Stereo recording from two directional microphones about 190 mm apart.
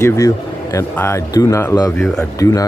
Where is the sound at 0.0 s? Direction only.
15° left (ahead or behind).